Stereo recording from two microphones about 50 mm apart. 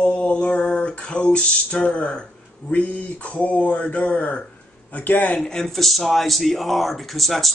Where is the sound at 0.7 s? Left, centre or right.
Left.